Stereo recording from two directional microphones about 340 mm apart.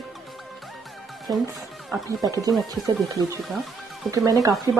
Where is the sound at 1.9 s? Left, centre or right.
Centre.